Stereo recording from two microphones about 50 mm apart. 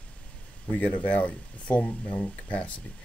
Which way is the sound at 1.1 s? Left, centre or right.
Left.